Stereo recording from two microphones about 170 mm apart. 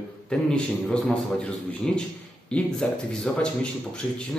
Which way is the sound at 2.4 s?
5° left (ahead or behind).